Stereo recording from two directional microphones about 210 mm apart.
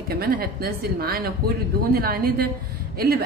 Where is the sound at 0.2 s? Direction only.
45° right (ahead or behind).